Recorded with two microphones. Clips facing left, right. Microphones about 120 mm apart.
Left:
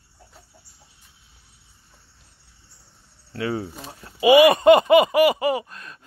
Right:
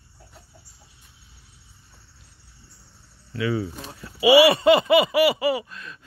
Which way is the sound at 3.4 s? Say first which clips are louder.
Right 1 dB; 40° left (ahead or behind).